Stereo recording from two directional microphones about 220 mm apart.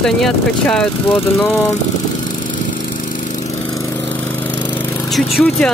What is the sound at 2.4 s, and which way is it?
Lawn mower, 35° left (ahead or behind).